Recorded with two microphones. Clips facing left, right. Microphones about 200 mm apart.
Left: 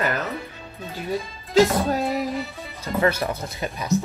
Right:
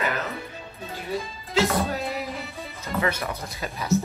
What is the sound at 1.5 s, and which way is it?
Speech, 45° left (ahead or behind).